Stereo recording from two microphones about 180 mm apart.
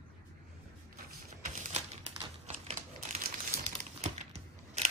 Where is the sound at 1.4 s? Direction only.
40° right (ahead or behind).